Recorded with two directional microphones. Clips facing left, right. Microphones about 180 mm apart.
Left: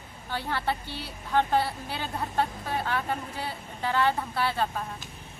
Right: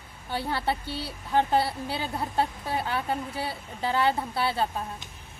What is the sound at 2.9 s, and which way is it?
A woman's voice, 30° right (ahead or behind).